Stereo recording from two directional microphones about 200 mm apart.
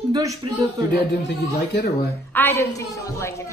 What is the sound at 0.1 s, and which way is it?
Speech, 15° right (ahead or behind).